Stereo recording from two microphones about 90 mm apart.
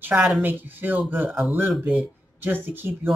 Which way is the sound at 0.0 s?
15° right (ahead or behind).